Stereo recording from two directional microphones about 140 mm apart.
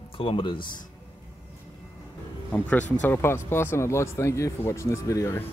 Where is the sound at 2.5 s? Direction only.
10° left (ahead or behind).